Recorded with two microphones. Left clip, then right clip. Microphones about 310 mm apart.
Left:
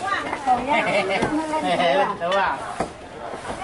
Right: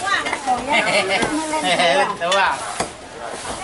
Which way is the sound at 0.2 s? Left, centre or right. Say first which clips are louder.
Right 1 dB; centre.